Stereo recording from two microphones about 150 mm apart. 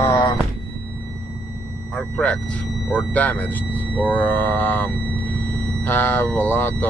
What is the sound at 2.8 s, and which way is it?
Speech, 10° left (ahead or behind).